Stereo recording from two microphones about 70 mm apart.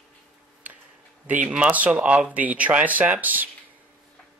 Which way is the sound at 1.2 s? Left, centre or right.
Right.